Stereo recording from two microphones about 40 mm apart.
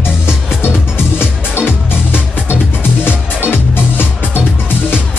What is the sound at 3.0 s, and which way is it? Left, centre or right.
Music, left.